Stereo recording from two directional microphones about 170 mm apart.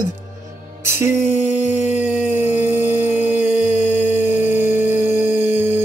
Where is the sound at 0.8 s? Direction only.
15° right (ahead or behind).